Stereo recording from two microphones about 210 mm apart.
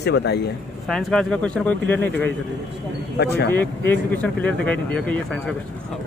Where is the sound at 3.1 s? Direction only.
55° left (ahead or behind).